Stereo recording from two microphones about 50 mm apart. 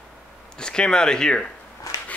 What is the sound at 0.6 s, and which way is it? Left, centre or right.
Speech, centre.